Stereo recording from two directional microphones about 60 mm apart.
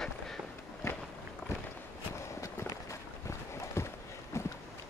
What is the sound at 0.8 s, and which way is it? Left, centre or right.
Walk, left.